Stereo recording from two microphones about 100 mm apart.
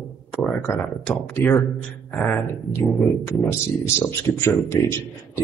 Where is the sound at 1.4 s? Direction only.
25° left (ahead or behind).